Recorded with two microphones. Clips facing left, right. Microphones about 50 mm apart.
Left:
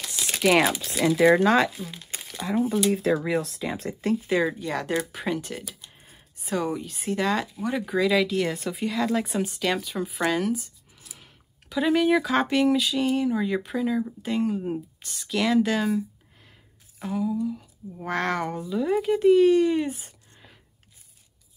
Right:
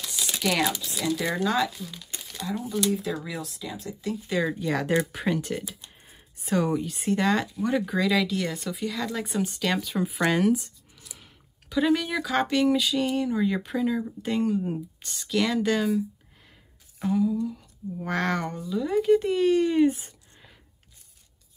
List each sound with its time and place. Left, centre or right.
0.4 s speech: left
0.8 s speech: left
1.8 s speech: left
2.4 s speech: left
4.3 s speech: centre
11.1 s a sound: centre
12.1 s speech: centre
17.0 s speech: centre